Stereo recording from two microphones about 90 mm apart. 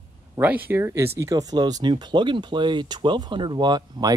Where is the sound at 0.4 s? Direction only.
20° right (ahead or behind).